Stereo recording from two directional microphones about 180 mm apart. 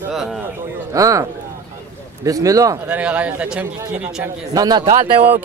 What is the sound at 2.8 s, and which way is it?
A man's voice, 10° right (ahead or behind).